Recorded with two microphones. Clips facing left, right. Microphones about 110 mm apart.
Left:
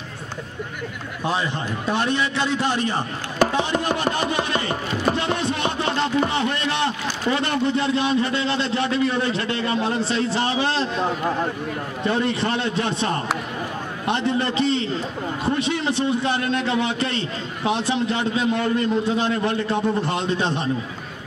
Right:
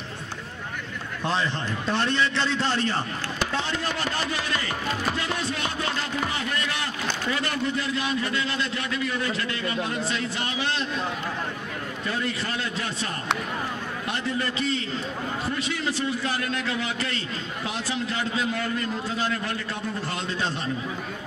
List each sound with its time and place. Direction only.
1.2 s a man's voice: 10° left (ahead or behind)
3.3 s a sound: 50° left (ahead or behind)
4.0 s a man's voice: 20° left (ahead or behind)
5.1 s music: 25° left (ahead or behind)
5.5 s a sound: 25° left (ahead or behind)
7.3 s a man's voice: 25° left (ahead or behind)
12.0 s a man's voice: 25° left (ahead or behind)